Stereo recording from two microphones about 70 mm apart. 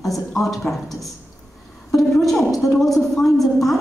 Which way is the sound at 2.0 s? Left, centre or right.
Centre.